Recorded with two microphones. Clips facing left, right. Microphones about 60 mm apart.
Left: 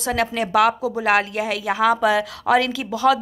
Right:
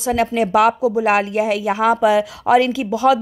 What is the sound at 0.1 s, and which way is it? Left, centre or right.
A woman's voice, right.